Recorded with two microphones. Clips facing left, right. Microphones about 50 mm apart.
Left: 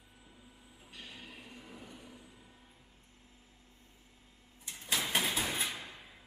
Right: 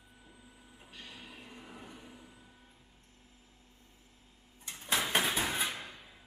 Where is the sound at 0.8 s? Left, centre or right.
Centre.